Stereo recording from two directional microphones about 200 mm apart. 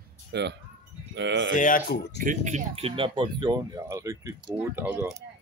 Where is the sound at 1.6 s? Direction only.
40° left (ahead or behind).